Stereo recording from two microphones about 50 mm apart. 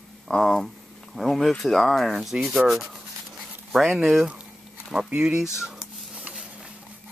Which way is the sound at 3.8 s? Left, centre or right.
Centre.